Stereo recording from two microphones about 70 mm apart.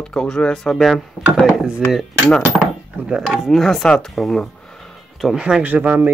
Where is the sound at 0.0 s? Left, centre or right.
Centre.